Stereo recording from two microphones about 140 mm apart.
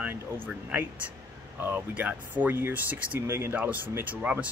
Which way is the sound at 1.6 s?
15° right (ahead or behind).